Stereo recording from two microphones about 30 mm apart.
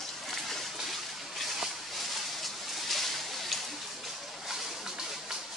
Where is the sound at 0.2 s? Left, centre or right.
Centre.